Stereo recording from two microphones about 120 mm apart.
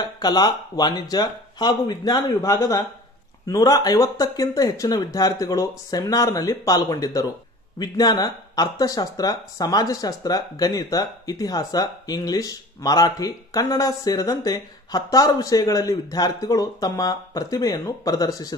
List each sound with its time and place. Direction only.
0.0 s speech: 35° left (ahead or behind)